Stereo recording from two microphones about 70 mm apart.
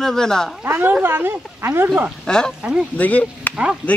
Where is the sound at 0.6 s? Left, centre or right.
Right.